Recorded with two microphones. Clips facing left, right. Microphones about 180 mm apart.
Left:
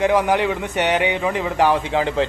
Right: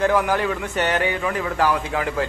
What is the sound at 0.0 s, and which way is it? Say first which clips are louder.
A man's voice: left 2 dB; 20° left (ahead or behind).